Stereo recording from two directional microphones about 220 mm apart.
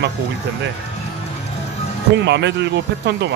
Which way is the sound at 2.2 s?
50° right (ahead or behind).